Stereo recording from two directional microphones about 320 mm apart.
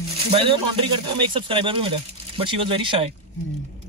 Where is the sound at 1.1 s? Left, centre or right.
Centre.